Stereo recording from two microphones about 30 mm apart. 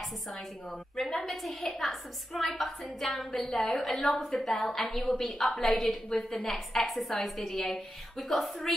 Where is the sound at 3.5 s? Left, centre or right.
Left.